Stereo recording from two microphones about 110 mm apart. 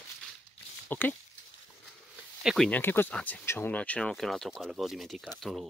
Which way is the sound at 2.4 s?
5° right (ahead or behind).